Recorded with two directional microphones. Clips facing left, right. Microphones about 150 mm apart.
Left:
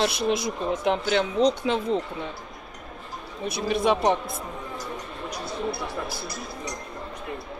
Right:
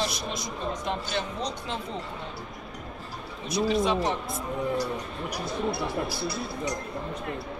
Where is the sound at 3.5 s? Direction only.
60° left (ahead or behind).